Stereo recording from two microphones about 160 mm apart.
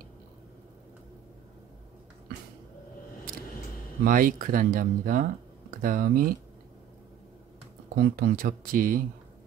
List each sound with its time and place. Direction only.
4.0 s speech: 60° right (ahead or behind)
7.9 s speech: 65° right (ahead or behind)